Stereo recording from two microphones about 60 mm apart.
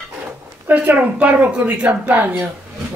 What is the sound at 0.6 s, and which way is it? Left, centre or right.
Speech, right.